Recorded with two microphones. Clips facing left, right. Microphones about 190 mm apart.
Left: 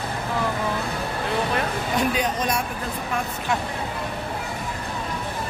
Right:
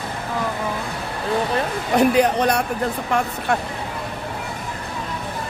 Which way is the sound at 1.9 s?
70° right (ahead or behind).